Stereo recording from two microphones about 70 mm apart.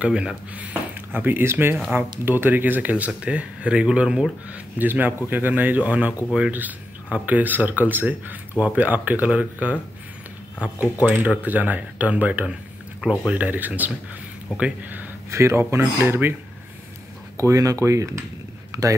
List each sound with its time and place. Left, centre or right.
0.0 s speech: centre
1.1 s speech: right; by 4.6 s centre
4.7 s speech: right
13.0 s speech: centre
13.3 s speech: right
15.3 s speech: right
17.4 s speech: right
18.7 s a sound: right